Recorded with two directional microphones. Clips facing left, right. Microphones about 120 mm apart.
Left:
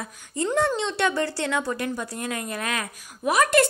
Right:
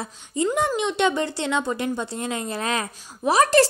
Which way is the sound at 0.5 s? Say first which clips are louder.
Right 1 dB; 15° right (ahead or behind).